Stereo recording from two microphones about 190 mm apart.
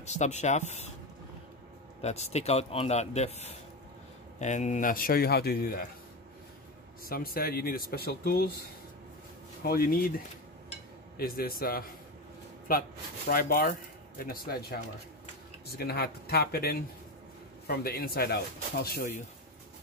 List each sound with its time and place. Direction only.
0.0 s speech: 35° left (ahead or behind)
2.0 s speech: 35° left (ahead or behind); by 5.9 s 50° left (ahead or behind)
7.1 s speech: 50° left (ahead or behind)
13.3 s speech: 50° left (ahead or behind)